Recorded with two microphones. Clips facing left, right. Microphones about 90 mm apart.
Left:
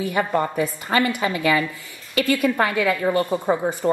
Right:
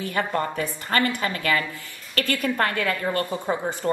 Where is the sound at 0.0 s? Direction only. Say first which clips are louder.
Left 4 dB; 10° left (ahead or behind).